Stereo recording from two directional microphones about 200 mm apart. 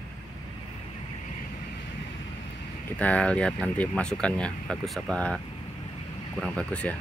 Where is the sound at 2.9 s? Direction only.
5° left (ahead or behind).